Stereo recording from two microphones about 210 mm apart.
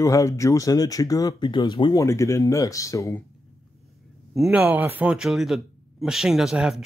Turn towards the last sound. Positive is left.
turn(degrees=-5)  # may be behind; listen again after turning